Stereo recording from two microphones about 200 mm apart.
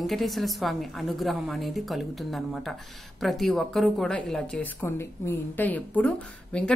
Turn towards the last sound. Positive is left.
turn(degrees=5)  # may be behind; listen again after turning